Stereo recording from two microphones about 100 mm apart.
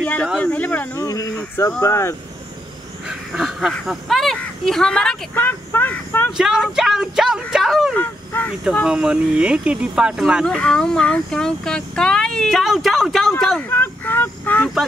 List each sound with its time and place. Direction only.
0.4 s a sound: 15° left (ahead or behind)
0.9 s a sound: 35° left (ahead or behind)
1.8 s speech: 30° left (ahead or behind)
3.1 s duck: 5° right (ahead or behind)
3.8 s speech: centre (ahead or behind)
5.3 s speech: 20° left (ahead or behind)
6.3 s speech: 5° right (ahead or behind)
7.9 s dog: 15° left (ahead or behind)
8.8 s speech: 10° right (ahead or behind)
10.4 s speech: 5° left (ahead or behind)
13.6 s speech: 20° left (ahead or behind)